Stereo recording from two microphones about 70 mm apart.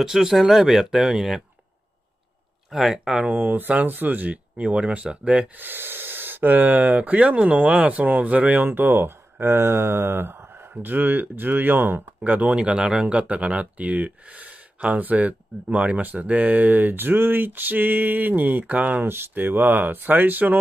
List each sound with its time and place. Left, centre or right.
0.0 s speech: centre
2.7 s speech: centre; by 20.5 s right